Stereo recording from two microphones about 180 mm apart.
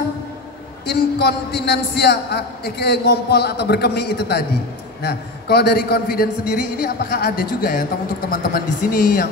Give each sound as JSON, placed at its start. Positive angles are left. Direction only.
{"t": 0.8, "sound": "a man's voice", "side_deg": 65}